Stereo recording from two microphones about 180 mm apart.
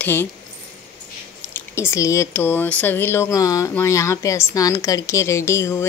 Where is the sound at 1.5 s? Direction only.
15° left (ahead or behind).